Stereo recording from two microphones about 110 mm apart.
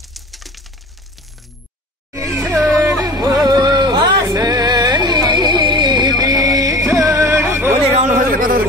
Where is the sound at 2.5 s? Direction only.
25° right (ahead or behind).